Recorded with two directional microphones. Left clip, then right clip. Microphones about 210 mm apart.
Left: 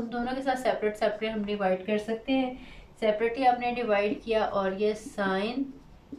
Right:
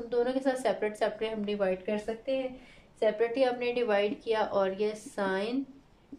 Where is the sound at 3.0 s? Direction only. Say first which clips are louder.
Left 1 dB; 45° right (ahead or behind).